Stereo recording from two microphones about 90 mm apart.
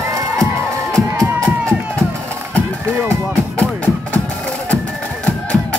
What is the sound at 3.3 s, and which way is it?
Music, 15° left (ahead or behind).